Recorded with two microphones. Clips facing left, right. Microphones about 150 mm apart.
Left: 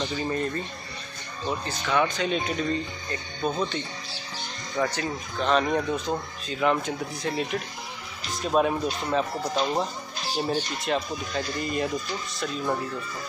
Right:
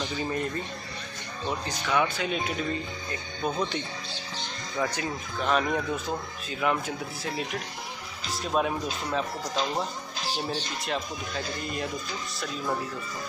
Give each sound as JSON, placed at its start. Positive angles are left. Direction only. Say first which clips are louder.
{"t": 0.2, "sound": "speech", "louder": "left 1 dB", "side_deg": -10}
{"t": 1.7, "sound": "speech", "louder": "left 2 dB", "side_deg": -10}
{"t": 5.7, "sound": "a man's voice", "louder": "left 3 dB", "side_deg": 20}
{"t": 6.5, "sound": "speech", "louder": "left 3 dB", "side_deg": -5}